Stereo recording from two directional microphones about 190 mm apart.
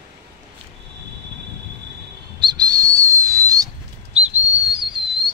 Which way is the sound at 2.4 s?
20° right (ahead or behind).